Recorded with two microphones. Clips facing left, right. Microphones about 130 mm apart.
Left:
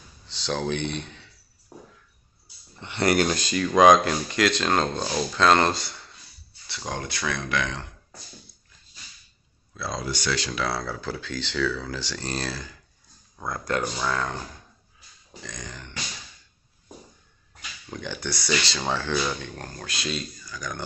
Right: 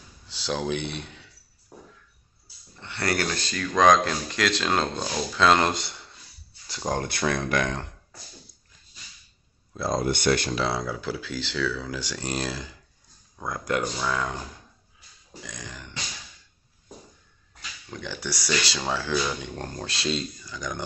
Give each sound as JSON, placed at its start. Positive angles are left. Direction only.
{"t": 0.3, "sound": "speech", "side_deg": -10}
{"t": 2.8, "sound": "speech", "side_deg": 20}
{"t": 5.7, "sound": "speech", "side_deg": -20}
{"t": 6.9, "sound": "speech", "side_deg": -50}
{"t": 9.8, "sound": "speech", "side_deg": -45}
{"t": 10.5, "sound": "speech", "side_deg": -20}
{"t": 15.4, "sound": "speech", "side_deg": -5}
{"t": 17.8, "sound": "speech", "side_deg": 0}
{"t": 19.4, "sound": "speech", "side_deg": -20}